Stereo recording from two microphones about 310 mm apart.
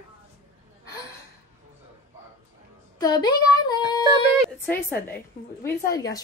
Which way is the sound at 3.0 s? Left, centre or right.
Centre.